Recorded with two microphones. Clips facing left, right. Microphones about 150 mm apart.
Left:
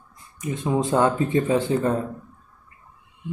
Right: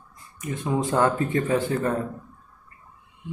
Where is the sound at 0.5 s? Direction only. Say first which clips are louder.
Left 3 dB; 20° left (ahead or behind).